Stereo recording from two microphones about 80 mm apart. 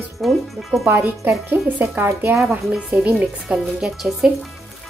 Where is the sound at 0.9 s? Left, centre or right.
Right.